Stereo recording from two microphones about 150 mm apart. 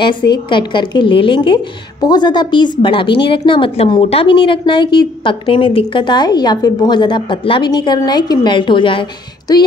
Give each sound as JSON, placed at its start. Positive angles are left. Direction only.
{"t": 0.0, "sound": "a woman's voice", "side_deg": 30}